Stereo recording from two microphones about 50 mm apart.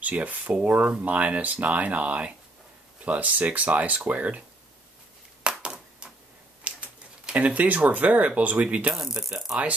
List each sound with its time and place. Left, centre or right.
0.0 s speech: right
5.4 s a sound: centre
6.7 s typewriter: right
7.3 s speech: right
8.9 s speech: centre